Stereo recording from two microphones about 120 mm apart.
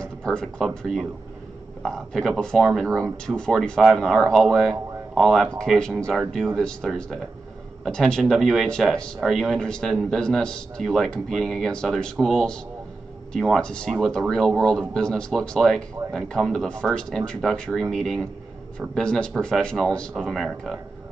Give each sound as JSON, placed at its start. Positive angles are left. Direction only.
{"t": 0.0, "sound": "speech", "side_deg": 5}